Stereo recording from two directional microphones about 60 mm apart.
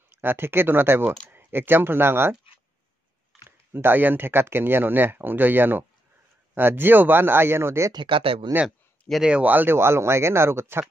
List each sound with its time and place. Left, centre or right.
0.2 s speech: right
3.4 s speech: right
8.6 s a sound: centre
9.4 s a man's voice: right
9.8 s speech: right